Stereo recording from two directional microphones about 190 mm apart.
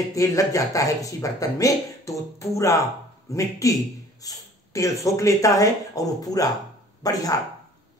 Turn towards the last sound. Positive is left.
turn(degrees=20)  # may be behind; listen again after turning